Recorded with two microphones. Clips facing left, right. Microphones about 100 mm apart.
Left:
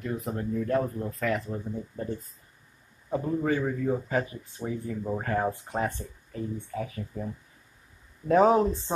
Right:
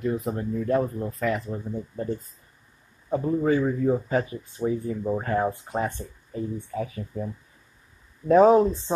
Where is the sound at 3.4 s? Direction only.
25° right (ahead or behind).